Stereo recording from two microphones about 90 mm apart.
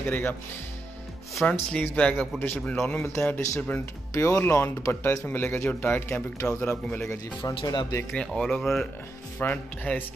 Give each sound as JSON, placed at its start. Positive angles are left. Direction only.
{"t": 0.0, "sound": "speech", "side_deg": 20}
{"t": 1.4, "sound": "speech", "side_deg": 10}
{"t": 4.1, "sound": "speech", "side_deg": 35}
{"t": 4.4, "sound": "speech", "side_deg": 25}
{"t": 7.4, "sound": "speech", "side_deg": 45}
{"t": 8.1, "sound": "speech", "side_deg": 5}
{"t": 9.4, "sound": "speech", "side_deg": 20}